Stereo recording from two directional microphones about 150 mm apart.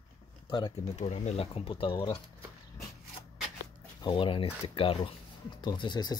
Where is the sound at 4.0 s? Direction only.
35° left (ahead or behind).